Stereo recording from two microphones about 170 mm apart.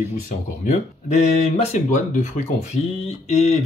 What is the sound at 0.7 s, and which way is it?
Speech, 40° left (ahead or behind).